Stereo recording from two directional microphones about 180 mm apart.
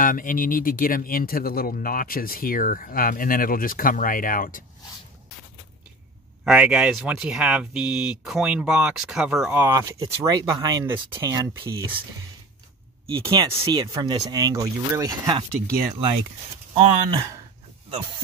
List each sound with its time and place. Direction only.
0.0 s speech: 50° left (ahead or behind)
6.4 s speech: 5° right (ahead or behind)
9.6 s speech: 15° right (ahead or behind)
13.2 s speech: 20° right (ahead or behind)